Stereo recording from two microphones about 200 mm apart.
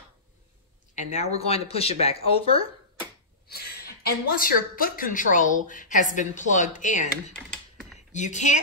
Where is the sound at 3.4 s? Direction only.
50° left (ahead or behind).